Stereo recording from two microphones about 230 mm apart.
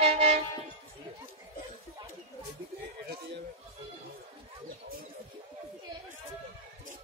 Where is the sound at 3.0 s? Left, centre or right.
Right.